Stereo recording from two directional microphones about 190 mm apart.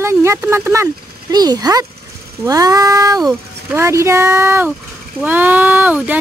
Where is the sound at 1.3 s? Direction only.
20° right (ahead or behind).